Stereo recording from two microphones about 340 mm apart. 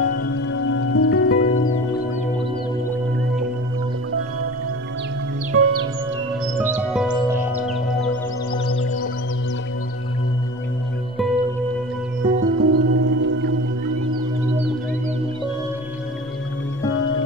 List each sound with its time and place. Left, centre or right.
0.0 s music: left
0.4 s music: left
5.5 s music: right
6.6 s music: centre
8.5 s music: left
12.4 s music: right